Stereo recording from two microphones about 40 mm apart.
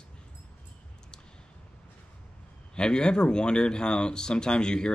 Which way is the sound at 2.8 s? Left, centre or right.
Left.